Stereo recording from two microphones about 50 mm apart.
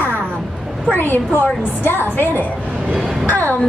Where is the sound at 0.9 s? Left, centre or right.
Left.